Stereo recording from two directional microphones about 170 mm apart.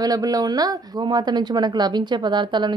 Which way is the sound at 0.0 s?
20° right (ahead or behind).